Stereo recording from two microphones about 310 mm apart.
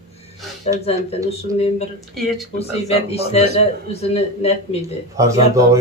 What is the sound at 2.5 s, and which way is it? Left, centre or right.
Speech, centre.